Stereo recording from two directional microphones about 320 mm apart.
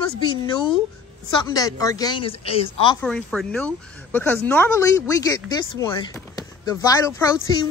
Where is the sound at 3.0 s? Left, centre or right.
Centre.